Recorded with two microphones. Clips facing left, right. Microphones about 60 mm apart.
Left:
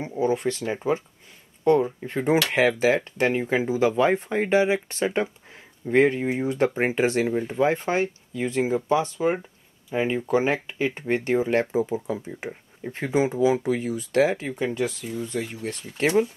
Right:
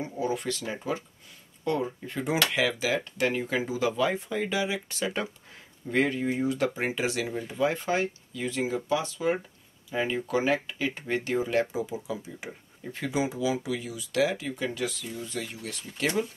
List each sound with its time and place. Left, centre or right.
0.0 s speech: left